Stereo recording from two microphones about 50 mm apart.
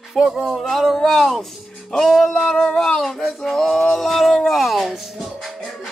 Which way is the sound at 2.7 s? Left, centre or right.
Centre.